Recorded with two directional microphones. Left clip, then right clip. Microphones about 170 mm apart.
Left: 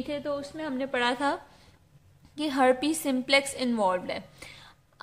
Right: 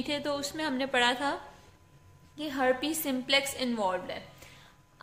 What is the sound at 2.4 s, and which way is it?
A woman's voice, 40° left (ahead or behind).